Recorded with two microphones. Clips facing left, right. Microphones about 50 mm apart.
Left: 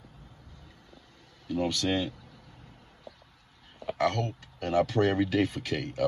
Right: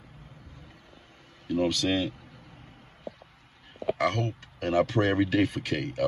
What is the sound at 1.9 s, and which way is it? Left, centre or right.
Speech, right.